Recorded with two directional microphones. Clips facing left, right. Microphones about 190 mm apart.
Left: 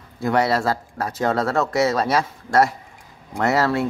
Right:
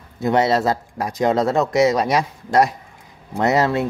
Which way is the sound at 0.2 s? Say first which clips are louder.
Right 2 dB; 20° right (ahead or behind).